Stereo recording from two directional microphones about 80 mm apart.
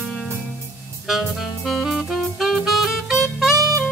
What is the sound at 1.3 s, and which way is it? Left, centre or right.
Saxophone, centre.